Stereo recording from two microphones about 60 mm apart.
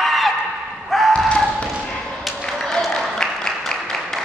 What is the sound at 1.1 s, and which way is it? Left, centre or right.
Basketball bounce, centre.